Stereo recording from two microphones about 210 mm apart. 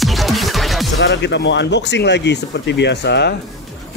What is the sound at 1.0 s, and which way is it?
Speech, 55° left (ahead or behind).